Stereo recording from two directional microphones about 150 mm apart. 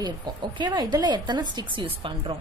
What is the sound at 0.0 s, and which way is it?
A woman's voice, 30° right (ahead or behind).